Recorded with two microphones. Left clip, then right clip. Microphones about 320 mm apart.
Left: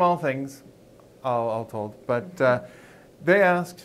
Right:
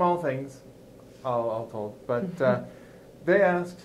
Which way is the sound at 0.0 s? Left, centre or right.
Left.